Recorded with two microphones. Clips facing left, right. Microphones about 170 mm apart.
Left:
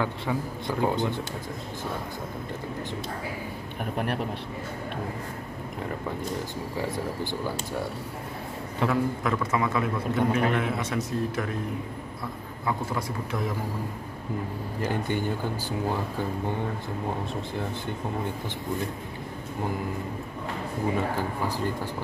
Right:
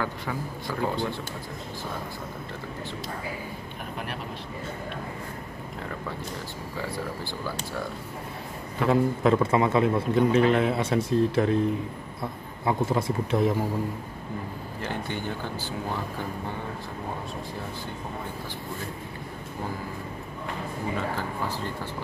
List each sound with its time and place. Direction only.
0.0 s speech: 20° left (ahead or behind)
8.8 s a man's voice: 25° right (ahead or behind)
12.6 s a man's voice: 25° right (ahead or behind)
14.8 s speech: 10° left (ahead or behind)